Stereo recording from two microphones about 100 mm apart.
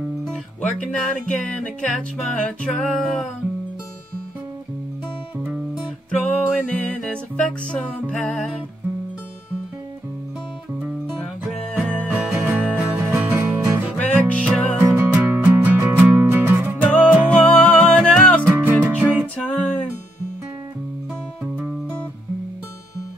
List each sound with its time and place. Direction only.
0.3 s music: 10° left (ahead or behind)
5.4 s music: 10° right (ahead or behind)
6.2 s music: 10° left (ahead or behind)
11.5 s music: 5° left (ahead or behind)
12.1 s music: 10° right (ahead or behind)
13.9 s music: 10° left (ahead or behind)
14.8 s music: 15° right (ahead or behind)
17.3 s music: 10° left (ahead or behind)
18.9 s music: 15° right (ahead or behind)
19.3 s music: 10° left (ahead or behind)